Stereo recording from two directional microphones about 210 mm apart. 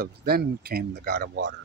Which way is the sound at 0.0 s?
50° right (ahead or behind).